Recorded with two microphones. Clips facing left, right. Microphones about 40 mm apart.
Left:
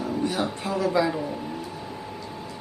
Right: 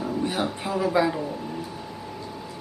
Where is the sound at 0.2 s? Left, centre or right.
Centre.